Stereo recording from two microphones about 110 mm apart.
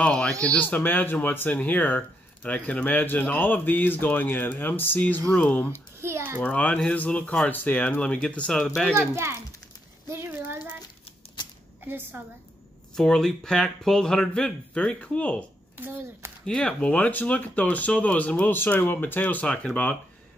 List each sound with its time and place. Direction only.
0.0 s speech: 5° left (ahead or behind)
5.9 s a child's voice: 25° right (ahead or behind)
6.4 s speech: 15° left (ahead or behind)
8.9 s a child's voice: 20° right (ahead or behind)
10.0 s a sound: 20° right (ahead or behind)
11.8 s a woman's voice: 20° right (ahead or behind)
12.9 s speech: 5° left (ahead or behind)
15.8 s a child's voice: 20° right (ahead or behind)
16.4 s speech: 10° left (ahead or behind)